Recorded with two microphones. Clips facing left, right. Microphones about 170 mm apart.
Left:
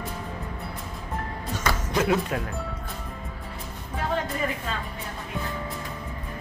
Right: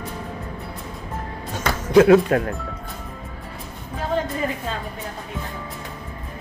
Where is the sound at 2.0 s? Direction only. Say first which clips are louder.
Right 13 dB; 65° right (ahead or behind).